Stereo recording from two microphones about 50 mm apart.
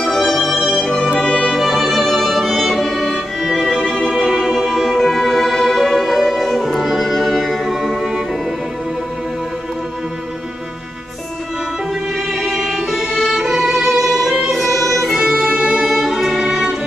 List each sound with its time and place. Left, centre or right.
0.0 s music: centre
0.6 s music: centre
12.4 s music: centre
15.5 s music: centre
15.9 s music: centre